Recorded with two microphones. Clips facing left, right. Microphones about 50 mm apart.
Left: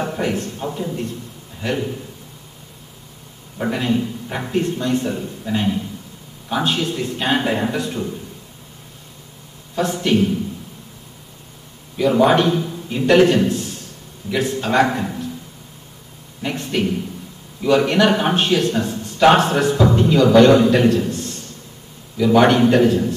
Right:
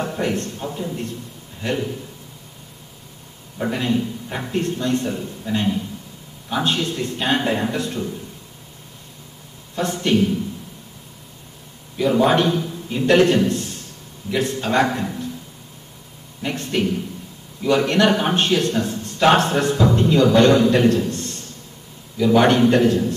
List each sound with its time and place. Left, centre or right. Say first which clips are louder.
0.0 s a man's voice: left 1 dB; centre
3.5 s a man's voice: left 1 dB; centre
10.0 s a man's voice: even; centre
12.0 s a man's voice: left 2 dB; centre
15.0 s a sound: left 1 dB; centre
16.4 s a man's voice: left 1 dB; centre